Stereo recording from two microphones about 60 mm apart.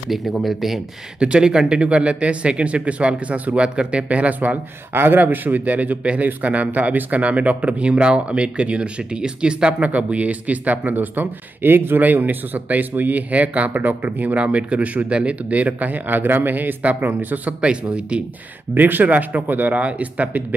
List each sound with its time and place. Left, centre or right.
0.1 s speech: centre
1.2 s a man's voice: centre
4.9 s a man's voice: right
17.6 s speech: centre
18.8 s a man's voice: right